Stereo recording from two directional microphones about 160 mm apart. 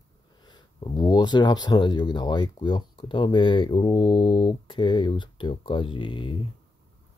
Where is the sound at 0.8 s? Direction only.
25° left (ahead or behind).